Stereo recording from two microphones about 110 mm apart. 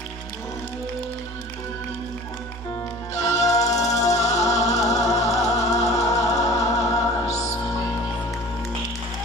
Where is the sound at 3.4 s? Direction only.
30° left (ahead or behind).